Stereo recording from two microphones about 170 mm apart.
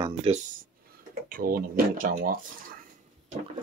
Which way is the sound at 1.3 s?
60° right (ahead or behind).